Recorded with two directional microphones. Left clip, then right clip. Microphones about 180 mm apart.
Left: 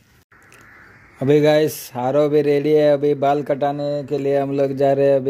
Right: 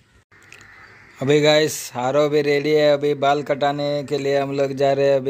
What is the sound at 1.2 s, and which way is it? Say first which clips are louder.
Speech: left 1 dB; 20° left (ahead or behind).